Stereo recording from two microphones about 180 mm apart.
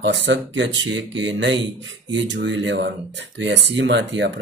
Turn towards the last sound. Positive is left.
turn(degrees=-75)  # may be behind; listen again after turning